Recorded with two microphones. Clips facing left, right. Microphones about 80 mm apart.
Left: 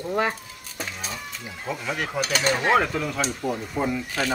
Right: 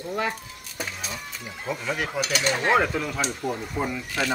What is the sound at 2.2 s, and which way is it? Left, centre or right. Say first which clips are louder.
Speech: left 3 dB; left.